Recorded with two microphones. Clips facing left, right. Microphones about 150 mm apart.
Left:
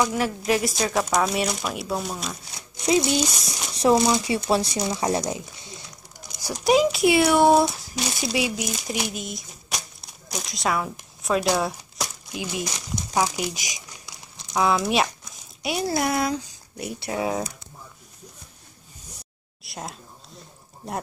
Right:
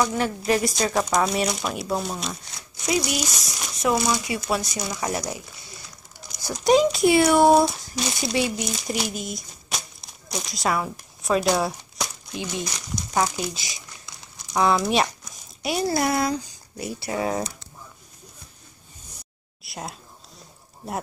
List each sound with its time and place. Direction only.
0.0 s speech: 5° left (ahead or behind)
2.5 s speech: 25° left (ahead or behind)
6.4 s speech: 5° left (ahead or behind)
14.5 s speech: 5° left (ahead or behind)
19.6 s speech: centre (ahead or behind)